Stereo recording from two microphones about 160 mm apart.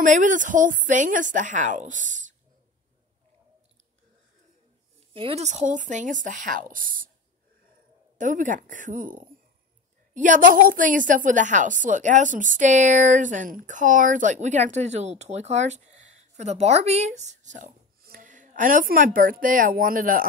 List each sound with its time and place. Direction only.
0.0 s a woman's voice: 55° right (ahead or behind)
5.1 s a woman's voice: 40° right (ahead or behind); by 7.1 s 60° right (ahead or behind)
8.2 s a woman's voice: 55° right (ahead or behind)